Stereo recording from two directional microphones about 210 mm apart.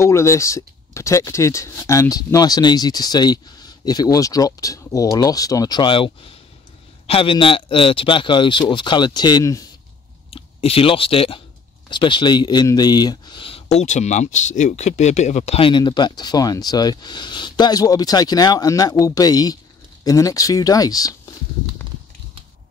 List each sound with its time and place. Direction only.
0.0 s speech: 15° left (ahead or behind)
10.3 s speech: 25° left (ahead or behind)